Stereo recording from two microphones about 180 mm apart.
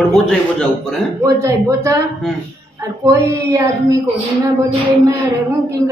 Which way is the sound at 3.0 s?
20° right (ahead or behind).